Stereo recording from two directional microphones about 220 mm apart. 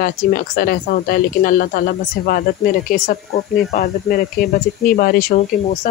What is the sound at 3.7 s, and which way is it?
Speech, 35° left (ahead or behind).